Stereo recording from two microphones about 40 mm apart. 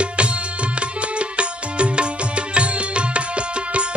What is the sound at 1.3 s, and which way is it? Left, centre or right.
Music, right.